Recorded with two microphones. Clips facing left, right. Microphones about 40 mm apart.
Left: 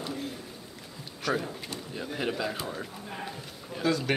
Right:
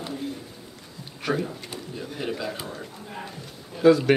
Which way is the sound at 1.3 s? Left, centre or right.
Centre.